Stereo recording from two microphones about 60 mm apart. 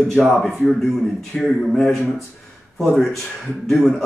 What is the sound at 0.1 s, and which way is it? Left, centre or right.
Speech, centre.